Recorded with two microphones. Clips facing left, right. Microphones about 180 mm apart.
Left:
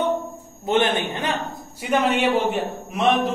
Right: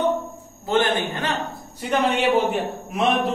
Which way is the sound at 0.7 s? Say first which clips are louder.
Left 1 dB; 20° left (ahead or behind).